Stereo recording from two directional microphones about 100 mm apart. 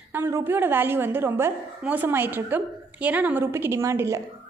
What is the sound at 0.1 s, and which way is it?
A woman's voice, 20° right (ahead or behind).